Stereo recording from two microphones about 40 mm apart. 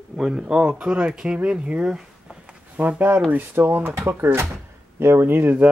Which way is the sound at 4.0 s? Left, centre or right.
Right.